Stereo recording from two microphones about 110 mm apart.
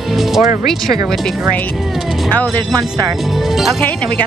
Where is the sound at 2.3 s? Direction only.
15° left (ahead or behind).